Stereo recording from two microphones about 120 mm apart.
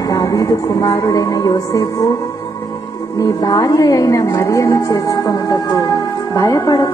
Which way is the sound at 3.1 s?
30° left (ahead or behind).